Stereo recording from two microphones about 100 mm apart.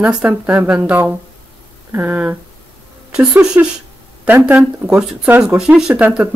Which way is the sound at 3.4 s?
10° right (ahead or behind).